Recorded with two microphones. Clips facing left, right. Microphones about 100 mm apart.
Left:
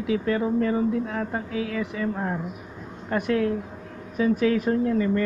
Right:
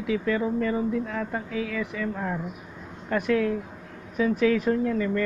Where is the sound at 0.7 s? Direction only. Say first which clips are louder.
Left 2 dB; 35° left (ahead or behind).